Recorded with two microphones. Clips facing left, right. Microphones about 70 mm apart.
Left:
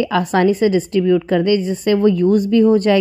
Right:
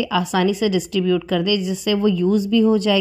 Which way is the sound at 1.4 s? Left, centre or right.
Left.